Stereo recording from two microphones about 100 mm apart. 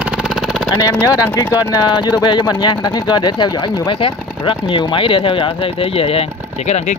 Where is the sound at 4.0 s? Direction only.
60° left (ahead or behind).